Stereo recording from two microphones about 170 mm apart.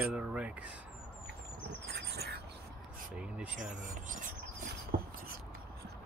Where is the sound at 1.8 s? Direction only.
75° right (ahead or behind).